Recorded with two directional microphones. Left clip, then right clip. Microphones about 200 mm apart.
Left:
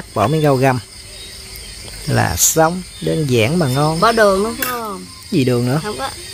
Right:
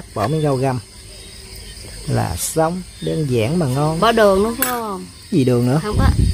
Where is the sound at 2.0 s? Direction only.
5° left (ahead or behind).